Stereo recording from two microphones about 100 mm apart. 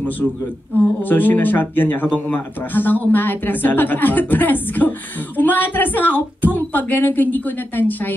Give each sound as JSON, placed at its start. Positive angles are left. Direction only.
{"t": 0.7, "sound": "a woman's voice", "side_deg": 20}